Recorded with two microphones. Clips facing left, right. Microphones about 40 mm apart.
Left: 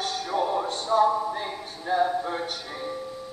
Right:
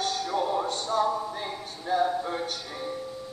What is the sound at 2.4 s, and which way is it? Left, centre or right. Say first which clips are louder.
Music: left 1 dB; left.